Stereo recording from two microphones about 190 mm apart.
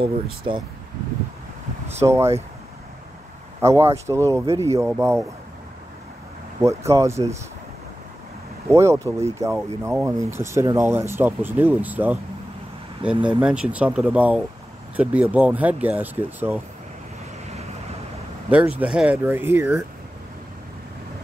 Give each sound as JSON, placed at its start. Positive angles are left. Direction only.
{"t": 0.5, "sound": "speech", "side_deg": -30}
{"t": 2.0, "sound": "speech", "side_deg": -15}
{"t": 3.6, "sound": "speech", "side_deg": -15}
{"t": 6.6, "sound": "speech", "side_deg": -15}
{"t": 8.6, "sound": "speech", "side_deg": -15}
{"t": 18.8, "sound": "speech", "side_deg": -5}